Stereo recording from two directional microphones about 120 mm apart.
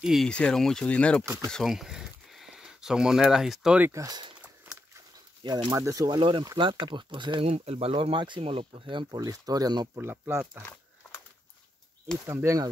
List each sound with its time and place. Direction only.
0.0 s speech: centre (ahead or behind)
1.2 s speech: 25° right (ahead or behind)
1.5 s speech: centre (ahead or behind)
3.8 s speech: 25° right (ahead or behind)
5.4 s speech: 40° right (ahead or behind)
5.7 s speech: 30° right (ahead or behind); by 7.4 s 45° right (ahead or behind)
7.4 s speech: 55° right (ahead or behind)
9.1 s speech: 30° right (ahead or behind)
9.9 s speech: 20° right (ahead or behind)
12.5 s speech: 25° right (ahead or behind)